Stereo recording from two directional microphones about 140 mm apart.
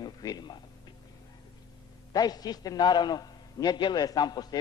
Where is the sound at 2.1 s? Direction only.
30° left (ahead or behind).